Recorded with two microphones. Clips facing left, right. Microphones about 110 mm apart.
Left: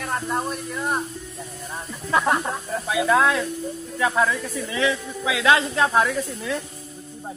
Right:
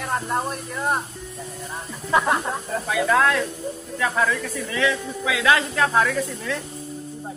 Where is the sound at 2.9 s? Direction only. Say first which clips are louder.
Even; 15° left (ahead or behind).